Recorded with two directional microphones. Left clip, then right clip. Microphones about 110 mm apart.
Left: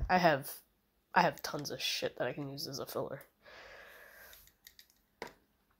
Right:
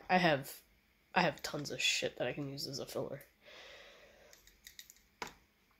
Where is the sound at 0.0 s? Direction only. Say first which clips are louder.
Left 2 dB; 5° left (ahead or behind).